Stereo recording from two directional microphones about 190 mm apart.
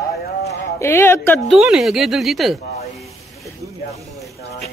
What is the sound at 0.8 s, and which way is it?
Speech, 15° left (ahead or behind).